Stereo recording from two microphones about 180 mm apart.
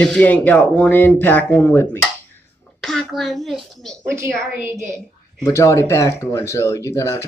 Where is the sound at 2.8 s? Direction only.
Centre (ahead or behind).